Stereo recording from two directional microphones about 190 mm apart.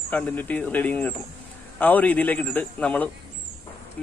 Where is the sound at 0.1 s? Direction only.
10° left (ahead or behind).